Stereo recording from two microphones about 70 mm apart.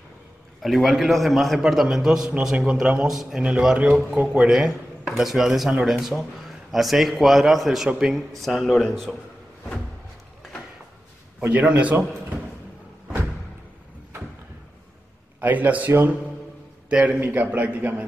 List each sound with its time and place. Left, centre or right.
0.6 s a man's voice: centre
11.4 s a man's voice: centre
15.4 s a man's voice: right
16.9 s a man's voice: centre
17.2 s a man's voice: right